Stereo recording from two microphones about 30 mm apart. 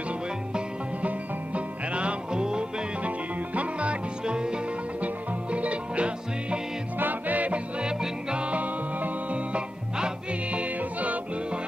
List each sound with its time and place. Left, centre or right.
1.0 s music: right
2.3 s music: right
3.0 s music: right
4.3 s music: right
5.0 s music: right
7.0 s music: right
8.3 s music: right
8.5 s music: right
10.8 s music: right